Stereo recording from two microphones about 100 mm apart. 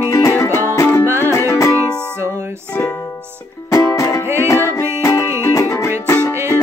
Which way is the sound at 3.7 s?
35° left (ahead or behind).